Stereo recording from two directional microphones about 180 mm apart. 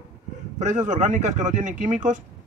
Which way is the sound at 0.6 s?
40° right (ahead or behind).